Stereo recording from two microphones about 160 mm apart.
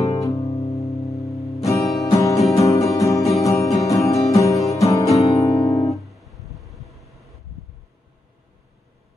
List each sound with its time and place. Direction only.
0.0 s music: 20° left (ahead or behind)
5.1 s music: centre (ahead or behind)
5.4 s guitar: 20° left (ahead or behind)
5.9 s music: centre (ahead or behind)